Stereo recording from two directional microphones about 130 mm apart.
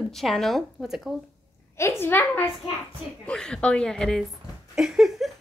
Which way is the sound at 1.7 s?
20° left (ahead or behind).